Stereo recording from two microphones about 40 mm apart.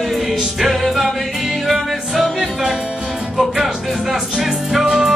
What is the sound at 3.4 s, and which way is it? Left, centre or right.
Speech, centre.